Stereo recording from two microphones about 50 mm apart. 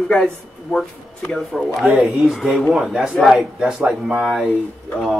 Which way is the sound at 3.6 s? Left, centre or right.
Centre.